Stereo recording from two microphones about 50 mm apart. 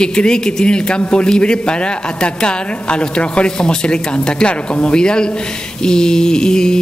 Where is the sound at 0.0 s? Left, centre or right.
Centre.